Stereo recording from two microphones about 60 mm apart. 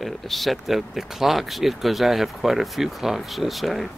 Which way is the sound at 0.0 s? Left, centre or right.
Centre.